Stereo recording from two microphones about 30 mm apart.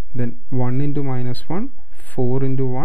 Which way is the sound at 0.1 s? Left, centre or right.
Left.